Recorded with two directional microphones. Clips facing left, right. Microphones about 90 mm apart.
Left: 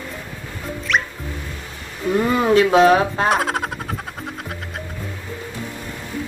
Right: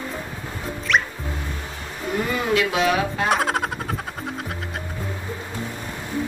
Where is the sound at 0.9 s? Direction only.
Centre (ahead or behind).